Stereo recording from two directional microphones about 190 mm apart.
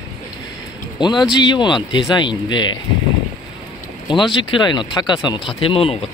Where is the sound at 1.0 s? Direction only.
25° left (ahead or behind).